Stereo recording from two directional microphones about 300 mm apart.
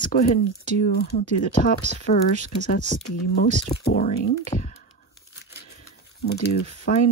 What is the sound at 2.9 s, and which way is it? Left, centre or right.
Speech, left.